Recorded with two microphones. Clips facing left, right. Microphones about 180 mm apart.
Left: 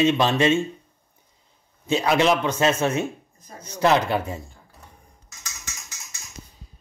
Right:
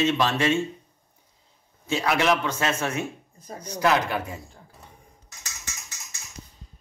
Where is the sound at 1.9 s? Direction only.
20° left (ahead or behind).